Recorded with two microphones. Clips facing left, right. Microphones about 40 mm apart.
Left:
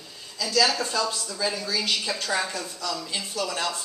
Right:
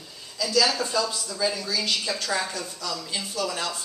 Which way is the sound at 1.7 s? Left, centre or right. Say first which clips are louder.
Even; centre.